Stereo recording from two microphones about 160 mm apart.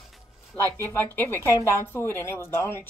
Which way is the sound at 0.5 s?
15° left (ahead or behind).